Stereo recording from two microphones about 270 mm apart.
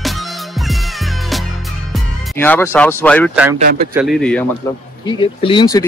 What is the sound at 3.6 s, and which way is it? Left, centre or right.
Speech, right.